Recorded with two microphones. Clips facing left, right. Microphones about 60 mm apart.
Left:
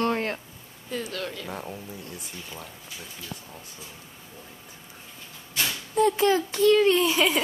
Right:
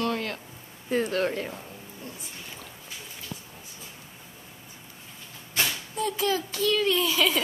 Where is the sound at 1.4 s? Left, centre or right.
Left.